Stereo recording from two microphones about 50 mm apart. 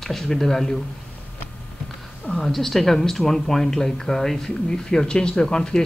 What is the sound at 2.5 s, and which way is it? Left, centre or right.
Speech, centre.